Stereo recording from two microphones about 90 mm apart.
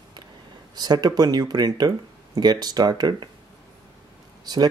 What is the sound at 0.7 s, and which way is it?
Speech, 50° right (ahead or behind).